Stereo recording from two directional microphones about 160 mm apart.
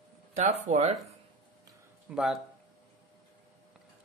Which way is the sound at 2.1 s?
5° right (ahead or behind).